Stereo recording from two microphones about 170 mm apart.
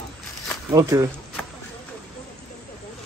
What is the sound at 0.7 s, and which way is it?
Speech, 20° right (ahead or behind).